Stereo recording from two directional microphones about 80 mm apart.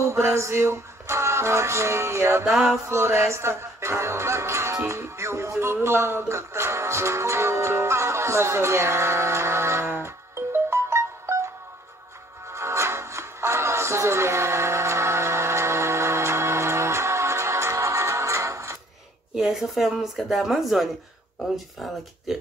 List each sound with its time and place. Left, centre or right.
0.0 s music: right
19.3 s speech: centre